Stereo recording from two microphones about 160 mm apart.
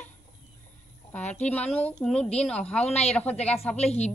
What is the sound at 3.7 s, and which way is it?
Speech, 40° left (ahead or behind).